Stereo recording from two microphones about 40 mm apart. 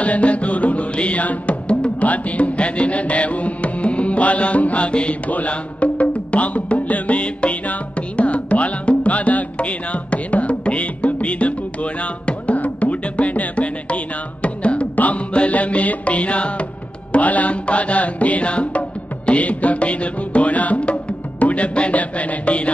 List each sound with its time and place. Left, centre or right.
0.0 s music: left